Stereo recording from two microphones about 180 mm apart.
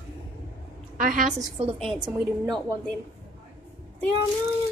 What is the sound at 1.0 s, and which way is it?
Speech, 50° right (ahead or behind).